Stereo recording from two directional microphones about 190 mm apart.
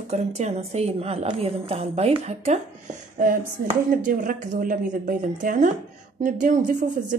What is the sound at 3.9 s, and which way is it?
Speech, 45° right (ahead or behind).